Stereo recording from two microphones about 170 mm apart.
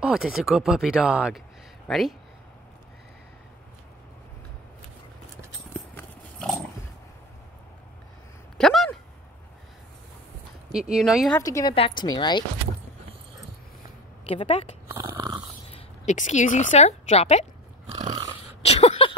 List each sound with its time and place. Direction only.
0.0 s speech: 5° right (ahead or behind)
5.9 s clip-clop: 5° left (ahead or behind)
8.5 s a sound: 5° left (ahead or behind)
10.7 s speech: 5° right (ahead or behind)
11.3 s a woman's voice: 20° left (ahead or behind)
11.7 s a woman's voice: 30° left (ahead or behind)
14.2 s speech: 35° left (ahead or behind)
14.9 s dog: 15° right (ahead or behind)
15.7 s a woman's voice: 45° left (ahead or behind)
18.6 s a sound: 35° left (ahead or behind)